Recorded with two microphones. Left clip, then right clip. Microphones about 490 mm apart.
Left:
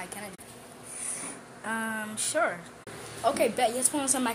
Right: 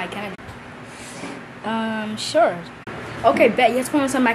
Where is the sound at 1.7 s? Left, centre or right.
Left.